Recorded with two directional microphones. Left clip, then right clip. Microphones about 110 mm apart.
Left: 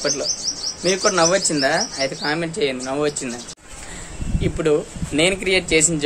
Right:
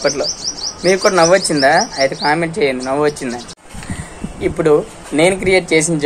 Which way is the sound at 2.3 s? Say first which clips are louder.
Right 7 dB; 20° left (ahead or behind).